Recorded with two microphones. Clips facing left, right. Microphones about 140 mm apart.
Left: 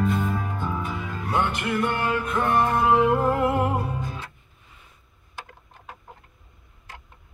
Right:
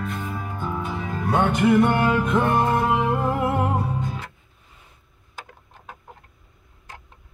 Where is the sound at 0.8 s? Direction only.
35° right (ahead or behind).